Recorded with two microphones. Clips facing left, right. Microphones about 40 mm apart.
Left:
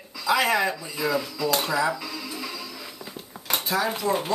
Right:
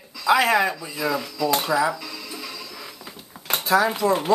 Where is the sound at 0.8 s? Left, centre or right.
Centre.